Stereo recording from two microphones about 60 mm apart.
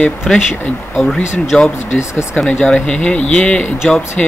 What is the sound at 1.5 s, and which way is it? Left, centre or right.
Speech, centre.